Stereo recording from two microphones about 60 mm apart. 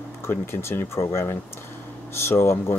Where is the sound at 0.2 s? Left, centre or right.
Left.